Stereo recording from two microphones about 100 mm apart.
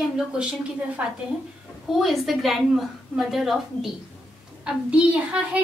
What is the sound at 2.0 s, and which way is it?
A woman's voice, centre (ahead or behind).